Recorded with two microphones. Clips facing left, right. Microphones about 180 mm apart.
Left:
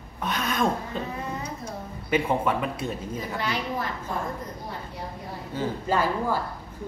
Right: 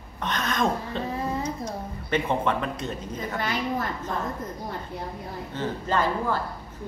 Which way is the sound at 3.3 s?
50° right (ahead or behind).